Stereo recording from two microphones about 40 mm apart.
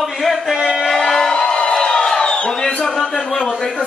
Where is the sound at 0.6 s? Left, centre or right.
Centre.